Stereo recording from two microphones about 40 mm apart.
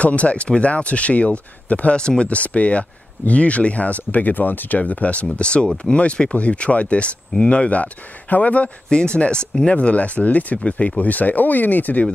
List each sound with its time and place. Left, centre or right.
0.0 s speech: left
2.0 s speech: left
2.2 s speech: left
8.9 s speech: left